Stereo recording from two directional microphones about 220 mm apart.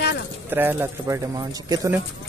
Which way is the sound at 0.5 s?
10° right (ahead or behind).